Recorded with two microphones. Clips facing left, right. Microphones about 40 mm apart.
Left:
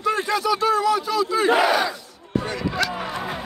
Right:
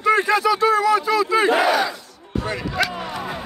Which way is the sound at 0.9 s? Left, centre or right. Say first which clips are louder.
Right 3 dB; right.